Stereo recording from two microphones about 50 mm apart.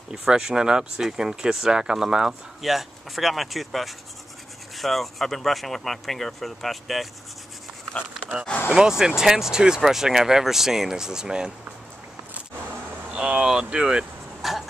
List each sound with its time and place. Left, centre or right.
0.1 s speech: centre
8.6 s speech: centre
13.1 s speech: centre
14.4 s a sound: centre